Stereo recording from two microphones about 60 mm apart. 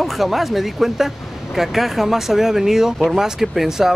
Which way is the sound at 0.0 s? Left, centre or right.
Centre.